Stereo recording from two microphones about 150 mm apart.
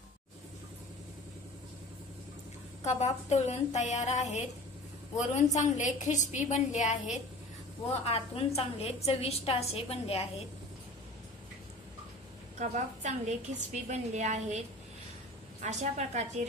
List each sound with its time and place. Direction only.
2.8 s a woman's voice: 50° left (ahead or behind)
5.6 s a woman's voice: 55° left (ahead or behind)
8.0 s a woman's voice: 40° left (ahead or behind)
12.5 s a woman's voice: 55° right (ahead or behind)
15.6 s a woman's voice: 50° right (ahead or behind)